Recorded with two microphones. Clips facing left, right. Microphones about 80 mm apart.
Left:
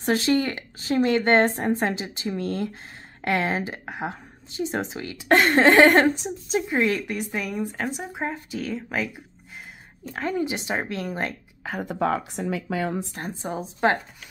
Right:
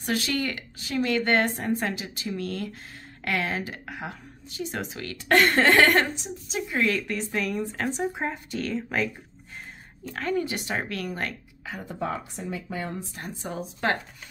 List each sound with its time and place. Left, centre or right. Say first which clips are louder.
0.0 s a woman's voice: left 6 dB; left
6.2 s a woman's voice: left 6 dB; left
6.8 s speech: left 2 dB; centre
10.0 s a woman's voice: left 1 dB; centre
11.8 s speech: left 7 dB; left
13.2 s a woman's voice: left 3 dB; left